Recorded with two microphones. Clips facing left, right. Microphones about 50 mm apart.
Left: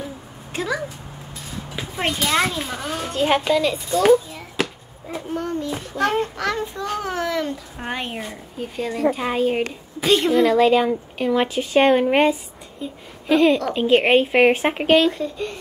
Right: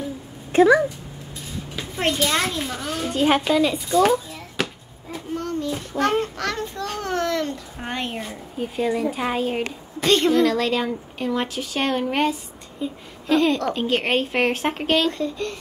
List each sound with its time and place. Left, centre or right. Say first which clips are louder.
0.5 s speech: right 11 dB; right
1.8 s a woman's voice: right 1 dB; centre
3.1 s a child's voice: even; centre
4.0 s a sound: left 5 dB; centre
5.4 s a woman's voice: right 1 dB; centre
5.9 s a child's voice: left 1 dB; centre
8.5 s a child's voice: right 3 dB; centre; by 12.3 s left
12.8 s a woman's voice: even; centre